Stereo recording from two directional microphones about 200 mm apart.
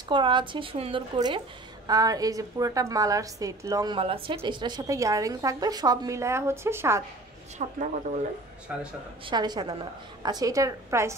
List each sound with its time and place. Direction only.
0.1 s a woman's voice: 25° right (ahead or behind)
7.6 s speech: 35° right (ahead or behind)
8.7 s a man's voice: 5° right (ahead or behind)
9.2 s a woman's voice: 20° right (ahead or behind)